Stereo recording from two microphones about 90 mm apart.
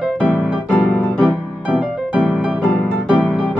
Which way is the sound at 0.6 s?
10° left (ahead or behind).